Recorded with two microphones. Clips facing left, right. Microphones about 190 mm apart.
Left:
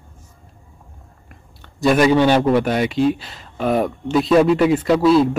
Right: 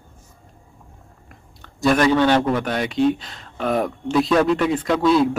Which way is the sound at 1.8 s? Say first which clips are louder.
Left 2 dB; 5° left (ahead or behind).